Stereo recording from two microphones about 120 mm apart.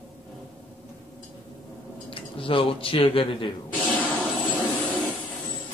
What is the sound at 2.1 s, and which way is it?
Speech, 50° left (ahead or behind).